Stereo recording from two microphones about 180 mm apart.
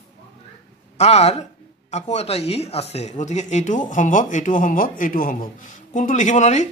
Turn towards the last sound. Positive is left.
turn(degrees=40)  # may be behind; listen again after turning